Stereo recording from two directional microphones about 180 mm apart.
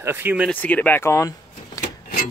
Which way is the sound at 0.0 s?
10° right (ahead or behind).